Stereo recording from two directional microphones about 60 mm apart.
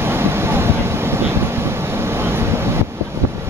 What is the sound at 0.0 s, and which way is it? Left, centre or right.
Vehicle, right.